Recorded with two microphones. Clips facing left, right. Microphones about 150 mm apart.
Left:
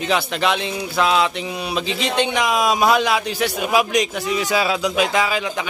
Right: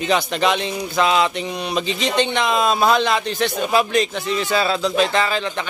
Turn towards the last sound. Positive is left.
turn(degrees=5)  # may be behind; listen again after turning